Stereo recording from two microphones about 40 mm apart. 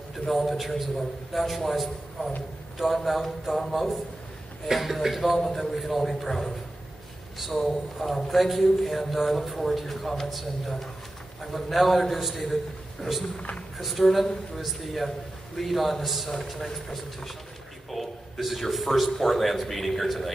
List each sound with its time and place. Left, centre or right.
0.3 s a man's voice: centre
7.5 s a man's voice: centre
13.4 s speech: left
13.7 s a man's voice: centre